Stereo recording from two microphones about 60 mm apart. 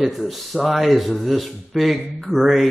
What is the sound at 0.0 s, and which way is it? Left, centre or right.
Speech, centre.